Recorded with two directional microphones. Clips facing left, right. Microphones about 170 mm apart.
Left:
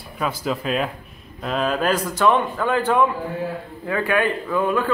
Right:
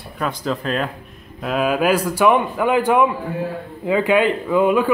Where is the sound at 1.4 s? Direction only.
5° right (ahead or behind).